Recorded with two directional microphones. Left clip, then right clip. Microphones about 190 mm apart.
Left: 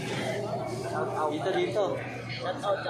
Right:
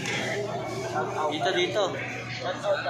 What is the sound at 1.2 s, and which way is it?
Speech, 5° left (ahead or behind).